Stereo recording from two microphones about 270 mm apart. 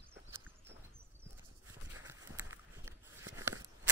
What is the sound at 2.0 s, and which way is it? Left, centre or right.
Walk, centre.